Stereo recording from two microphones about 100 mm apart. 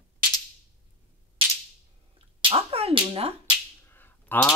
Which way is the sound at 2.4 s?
70° right (ahead or behind).